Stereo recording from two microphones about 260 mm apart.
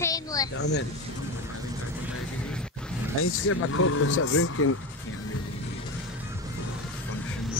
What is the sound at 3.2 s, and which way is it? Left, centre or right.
Speech, left.